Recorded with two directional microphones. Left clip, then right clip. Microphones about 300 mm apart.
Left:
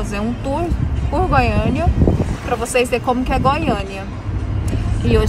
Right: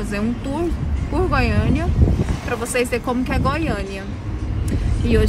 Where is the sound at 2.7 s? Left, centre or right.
Centre.